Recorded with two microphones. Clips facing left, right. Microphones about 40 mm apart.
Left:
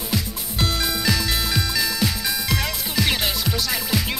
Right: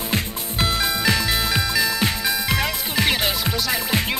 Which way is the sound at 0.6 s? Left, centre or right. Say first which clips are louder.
Right 2 dB; centre.